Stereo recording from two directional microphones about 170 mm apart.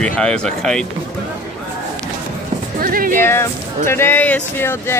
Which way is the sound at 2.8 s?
60° right (ahead or behind).